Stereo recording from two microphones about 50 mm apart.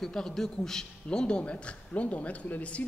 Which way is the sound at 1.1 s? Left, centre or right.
Left.